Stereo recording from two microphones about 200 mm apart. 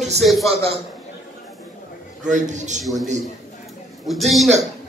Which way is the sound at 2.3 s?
35° right (ahead or behind).